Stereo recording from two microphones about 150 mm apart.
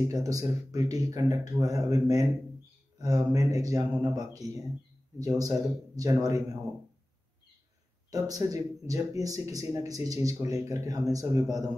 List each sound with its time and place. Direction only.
0.1 s speech: 25° right (ahead or behind)
8.1 s speech: 20° right (ahead or behind)